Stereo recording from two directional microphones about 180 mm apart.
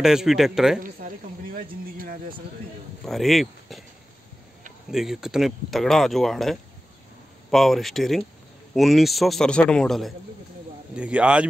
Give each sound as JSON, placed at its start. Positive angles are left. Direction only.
{"t": 0.0, "sound": "speech", "side_deg": -5}
{"t": 0.8, "sound": "speech", "side_deg": -50}
{"t": 3.1, "sound": "speech", "side_deg": 0}
{"t": 4.9, "sound": "speech", "side_deg": -5}